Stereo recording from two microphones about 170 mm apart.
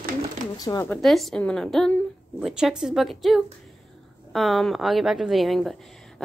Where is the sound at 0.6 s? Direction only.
20° left (ahead or behind).